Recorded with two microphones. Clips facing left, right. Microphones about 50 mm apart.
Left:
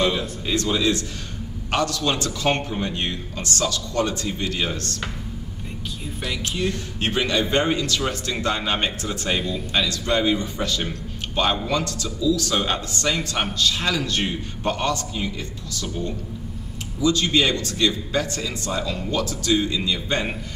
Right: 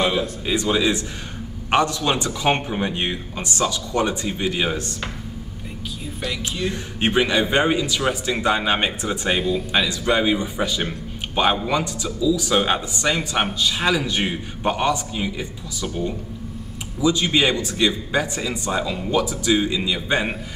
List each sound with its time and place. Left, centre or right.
0.0 s a man's voice: centre
6.2 s speech: centre
6.7 s a man's voice: centre